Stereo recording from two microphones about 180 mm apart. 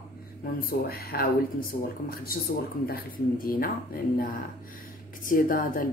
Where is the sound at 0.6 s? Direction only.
60° left (ahead or behind).